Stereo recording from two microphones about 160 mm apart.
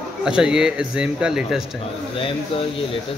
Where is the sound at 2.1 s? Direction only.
35° left (ahead or behind).